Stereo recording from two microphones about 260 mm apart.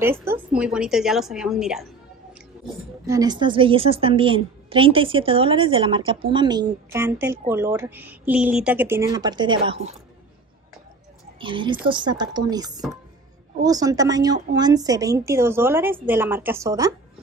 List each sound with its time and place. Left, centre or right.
0.0 s a woman's voice: centre
3.1 s a woman's voice: centre
11.3 s a woman's voice: centre